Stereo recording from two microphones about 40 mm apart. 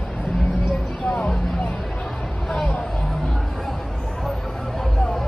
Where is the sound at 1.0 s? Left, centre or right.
Left.